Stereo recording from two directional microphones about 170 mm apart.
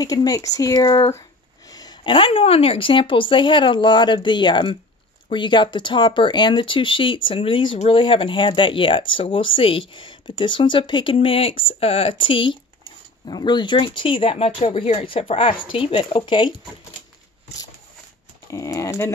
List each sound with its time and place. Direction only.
0.0 s speech: 20° left (ahead or behind)
18.5 s speech: 20° left (ahead or behind)